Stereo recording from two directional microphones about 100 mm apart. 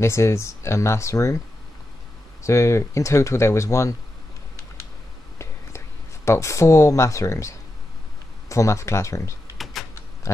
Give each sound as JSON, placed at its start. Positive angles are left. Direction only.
{"t": 0.0, "sound": "speech", "side_deg": 30}
{"t": 2.4, "sound": "speech", "side_deg": 30}
{"t": 6.2, "sound": "speech", "side_deg": 30}
{"t": 9.8, "sound": "typewriter", "side_deg": 0}
{"t": 10.3, "sound": "pig", "side_deg": 30}